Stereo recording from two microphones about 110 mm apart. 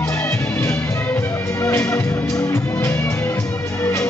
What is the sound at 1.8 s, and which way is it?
Music, 10° left (ahead or behind).